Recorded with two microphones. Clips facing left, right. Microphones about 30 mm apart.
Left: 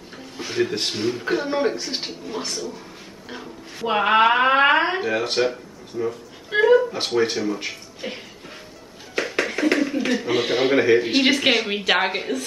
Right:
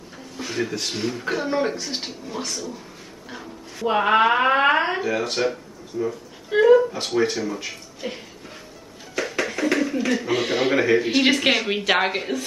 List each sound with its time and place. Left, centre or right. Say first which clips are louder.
0.4 s a sound: left 3 dB; centre
0.7 s speech: left 3 dB; left
1.2 s speech: even; centre
6.9 s speech: left 2 dB; left
7.3 s speech: left 2 dB; centre
9.3 s music: left 2 dB; left
9.8 s a sound: left 1 dB; centre
10.0 s a woman's voice: left 1 dB; centre